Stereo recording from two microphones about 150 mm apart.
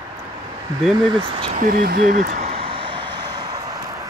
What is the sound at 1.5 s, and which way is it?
Speech, 70° right (ahead or behind).